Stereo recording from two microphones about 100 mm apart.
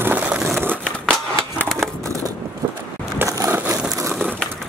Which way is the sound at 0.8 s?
5° left (ahead or behind).